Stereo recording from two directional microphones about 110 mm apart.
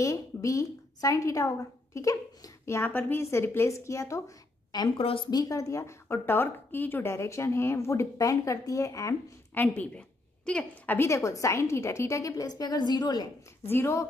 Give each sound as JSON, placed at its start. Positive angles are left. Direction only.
{"t": 0.0, "sound": "a woman's voice", "side_deg": 30}
{"t": 4.9, "sound": "a woman's voice", "side_deg": 60}
{"t": 5.3, "sound": "a woman's voice", "side_deg": 35}
{"t": 9.5, "sound": "a woman's voice", "side_deg": 15}
{"t": 11.0, "sound": "a woman's voice", "side_deg": 25}
{"t": 13.7, "sound": "a woman's voice", "side_deg": 20}